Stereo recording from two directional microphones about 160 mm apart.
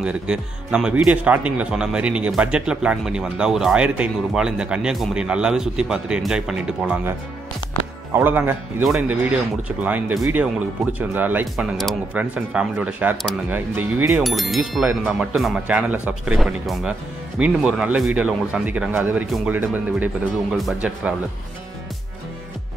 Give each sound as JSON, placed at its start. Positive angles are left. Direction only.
{"t": 0.0, "sound": "speech", "side_deg": -5}
{"t": 11.7, "sound": "speech", "side_deg": 0}
{"t": 14.2, "sound": "speech", "side_deg": 0}